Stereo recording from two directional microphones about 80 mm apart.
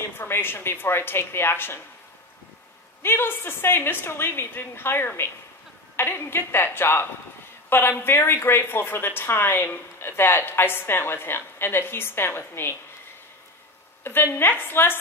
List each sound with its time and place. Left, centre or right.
0.2 s a woman's voice: left
3.0 s a woman's voice: left
14.0 s a woman's voice: left